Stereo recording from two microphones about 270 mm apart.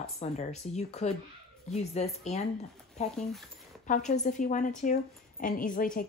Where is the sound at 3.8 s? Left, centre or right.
Left.